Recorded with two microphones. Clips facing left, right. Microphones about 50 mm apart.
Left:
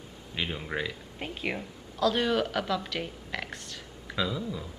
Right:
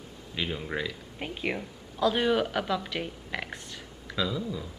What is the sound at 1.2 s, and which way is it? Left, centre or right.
Speech, centre.